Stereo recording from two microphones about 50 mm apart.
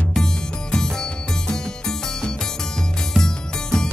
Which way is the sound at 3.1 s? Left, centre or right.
Centre.